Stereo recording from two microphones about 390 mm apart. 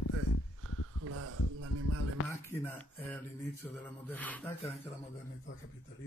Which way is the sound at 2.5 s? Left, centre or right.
Centre.